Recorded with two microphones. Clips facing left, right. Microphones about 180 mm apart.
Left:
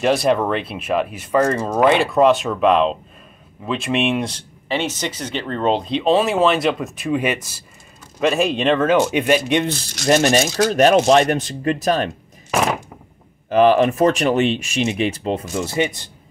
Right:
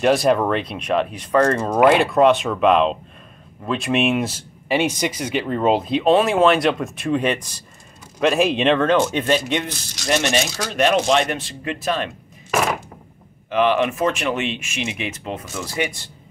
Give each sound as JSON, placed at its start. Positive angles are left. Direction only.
{"t": 0.0, "sound": "speech", "side_deg": 0}
{"t": 1.7, "sound": "speech", "side_deg": -5}
{"t": 10.0, "sound": "speech", "side_deg": 40}
{"t": 13.5, "sound": "speech", "side_deg": 40}